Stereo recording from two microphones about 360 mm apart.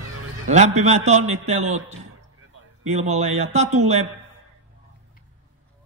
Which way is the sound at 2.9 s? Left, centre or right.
Centre.